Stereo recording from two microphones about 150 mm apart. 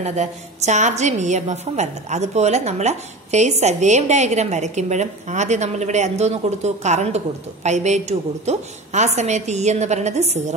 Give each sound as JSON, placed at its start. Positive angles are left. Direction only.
{"t": 0.0, "sound": "a woman's voice", "side_deg": -50}